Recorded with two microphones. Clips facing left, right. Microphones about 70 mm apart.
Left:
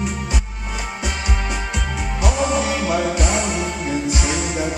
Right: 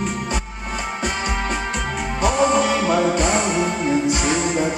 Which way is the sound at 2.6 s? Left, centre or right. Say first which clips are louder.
Right 3 dB; centre.